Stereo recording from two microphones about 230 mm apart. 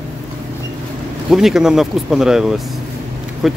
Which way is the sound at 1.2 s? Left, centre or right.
Centre.